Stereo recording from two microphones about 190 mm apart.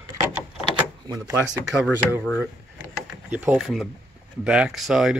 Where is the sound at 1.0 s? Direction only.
15° right (ahead or behind).